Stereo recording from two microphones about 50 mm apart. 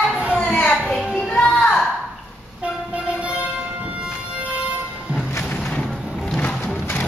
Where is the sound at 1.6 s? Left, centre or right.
Centre.